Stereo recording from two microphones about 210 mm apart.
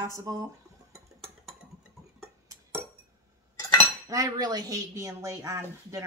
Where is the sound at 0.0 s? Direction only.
15° right (ahead or behind).